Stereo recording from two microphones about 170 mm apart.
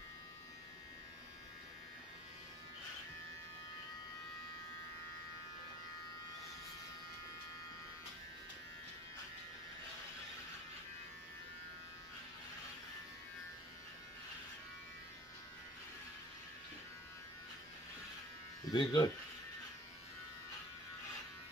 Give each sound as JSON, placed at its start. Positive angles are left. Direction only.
{"t": 18.7, "sound": "speech", "side_deg": 25}